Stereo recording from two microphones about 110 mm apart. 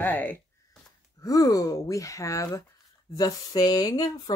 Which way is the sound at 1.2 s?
35° left (ahead or behind).